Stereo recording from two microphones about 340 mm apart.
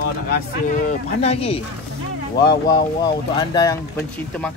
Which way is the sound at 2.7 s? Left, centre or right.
Centre.